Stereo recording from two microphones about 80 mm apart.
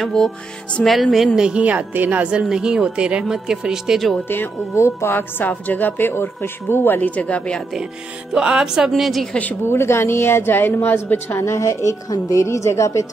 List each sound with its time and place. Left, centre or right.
0.0 s music: centre
0.8 s speech: centre
4.3 s a woman's voice: left; by 7.6 s centre
8.3 s a woman's voice: centre
9.3 s a woman's voice: centre
9.7 s a woman's voice: left